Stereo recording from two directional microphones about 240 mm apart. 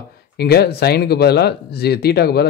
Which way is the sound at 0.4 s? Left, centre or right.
Left.